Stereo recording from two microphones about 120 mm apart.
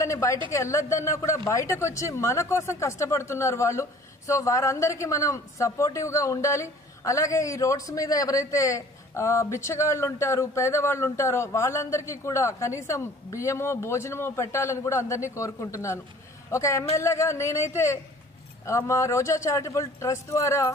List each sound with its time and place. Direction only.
0.0 s a woman's voice: 25° left (ahead or behind)